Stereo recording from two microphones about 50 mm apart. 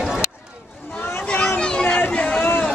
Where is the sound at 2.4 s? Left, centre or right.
Left.